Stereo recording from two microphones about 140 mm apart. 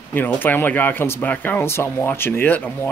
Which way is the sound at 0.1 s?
15° left (ahead or behind).